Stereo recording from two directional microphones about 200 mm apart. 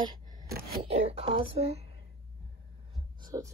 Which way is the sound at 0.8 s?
30° right (ahead or behind).